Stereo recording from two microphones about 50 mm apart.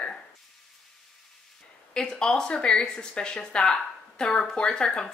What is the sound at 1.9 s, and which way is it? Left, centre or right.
Speech, centre.